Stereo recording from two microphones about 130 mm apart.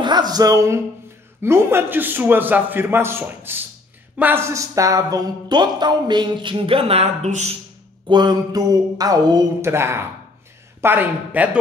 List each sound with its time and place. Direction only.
0.0 s a man's voice: 30° right (ahead or behind); by 7.1 s 50° right (ahead or behind)
8.1 s speech: 35° right (ahead or behind)
9.6 s a man's voice: 20° right (ahead or behind)